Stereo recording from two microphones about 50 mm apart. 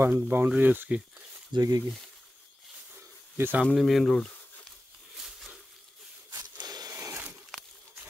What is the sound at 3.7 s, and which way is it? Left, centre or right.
Speech, centre.